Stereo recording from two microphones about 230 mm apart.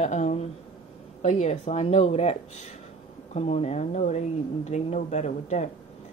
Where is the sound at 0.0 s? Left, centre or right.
Left.